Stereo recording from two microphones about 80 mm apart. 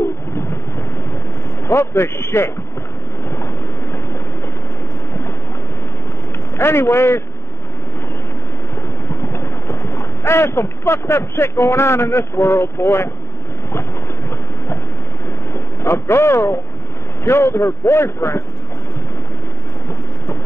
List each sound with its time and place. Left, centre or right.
1.7 s a man's voice: left
6.6 s a man's voice: left
9.1 s speech: left
15.5 s vehicle: left
17.2 s a man's voice: left